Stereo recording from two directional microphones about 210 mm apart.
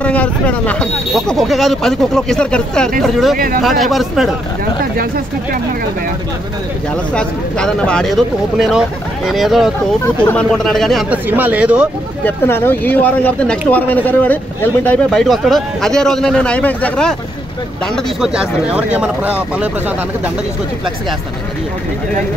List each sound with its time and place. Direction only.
0.0 s speech: 5° left (ahead or behind)
3.3 s speech: 45° right (ahead or behind)
3.8 s speech: centre (ahead or behind)
4.9 s speech: 45° right (ahead or behind)
7.2 s speech: 5° left (ahead or behind)
12.3 s speech: 10° left (ahead or behind); by 19.7 s 5° right (ahead or behind)